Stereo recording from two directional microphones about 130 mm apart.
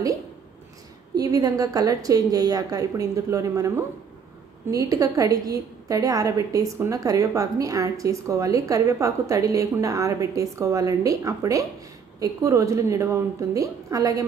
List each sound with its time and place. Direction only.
1.1 s a woman's voice: 25° right (ahead or behind)